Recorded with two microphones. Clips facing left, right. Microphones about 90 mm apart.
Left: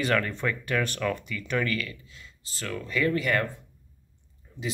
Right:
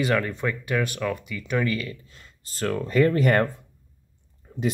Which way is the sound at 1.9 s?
45° right (ahead or behind).